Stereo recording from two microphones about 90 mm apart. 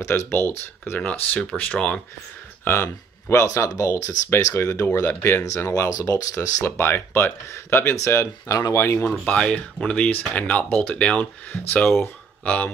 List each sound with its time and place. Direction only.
0.0 s speech: 25° left (ahead or behind)
2.6 s speech: 25° left (ahead or behind)
5.9 s speech: 45° left (ahead or behind)
6.6 s speech: 25° left (ahead or behind)
8.5 s speech: 40° left (ahead or behind)
8.8 s speech: 25° left (ahead or behind)
9.1 s speech: 10° left (ahead or behind)